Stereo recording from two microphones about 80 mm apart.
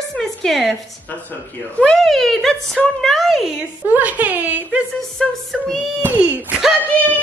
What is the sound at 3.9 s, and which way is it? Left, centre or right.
Speech, right.